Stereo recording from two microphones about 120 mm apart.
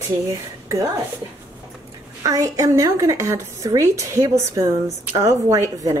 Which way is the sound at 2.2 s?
30° right (ahead or behind).